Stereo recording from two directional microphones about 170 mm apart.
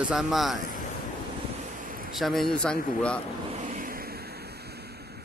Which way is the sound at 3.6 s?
50° right (ahead or behind).